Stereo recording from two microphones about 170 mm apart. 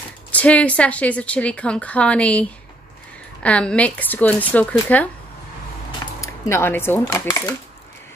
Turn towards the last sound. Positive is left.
turn(degrees=20)  # may be behind; listen again after turning